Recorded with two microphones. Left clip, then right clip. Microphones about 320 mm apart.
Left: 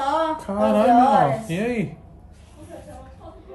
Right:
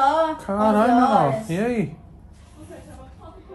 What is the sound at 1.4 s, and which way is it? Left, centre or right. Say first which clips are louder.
Speech: right 1 dB; centre.